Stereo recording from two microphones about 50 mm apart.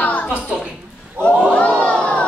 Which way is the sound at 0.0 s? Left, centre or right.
Left.